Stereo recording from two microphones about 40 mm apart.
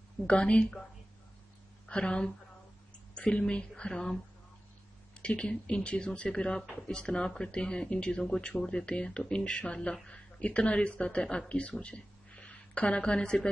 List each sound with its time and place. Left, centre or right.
0.3 s speech: left
1.9 s a woman's voice: left
5.2 s speech: left